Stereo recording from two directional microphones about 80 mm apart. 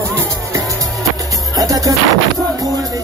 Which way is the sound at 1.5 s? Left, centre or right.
Right.